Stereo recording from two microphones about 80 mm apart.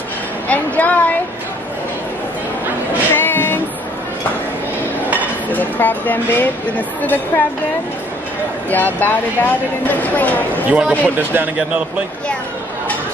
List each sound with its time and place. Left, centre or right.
0.5 s speech: centre
3.2 s music: left
5.5 s speech: left
8.6 s speech: left
10.7 s speech: centre